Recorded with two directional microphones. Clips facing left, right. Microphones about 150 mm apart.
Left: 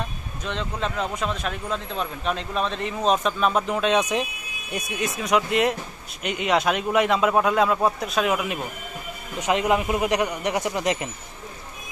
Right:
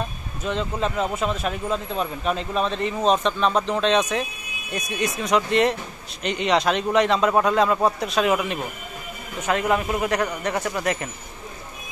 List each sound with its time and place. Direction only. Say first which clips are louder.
0.4 s speech: right 4 dB; 5° right (ahead or behind)
9.4 s speech: left 1 dB; 15° left (ahead or behind)